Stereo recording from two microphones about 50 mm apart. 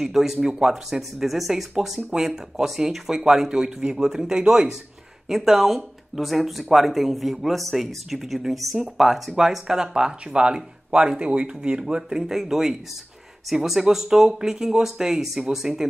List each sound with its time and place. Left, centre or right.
0.0 s speech: centre